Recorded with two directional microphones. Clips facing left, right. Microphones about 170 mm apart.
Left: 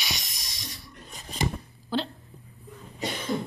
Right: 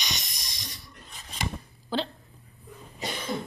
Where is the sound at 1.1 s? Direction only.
40° left (ahead or behind).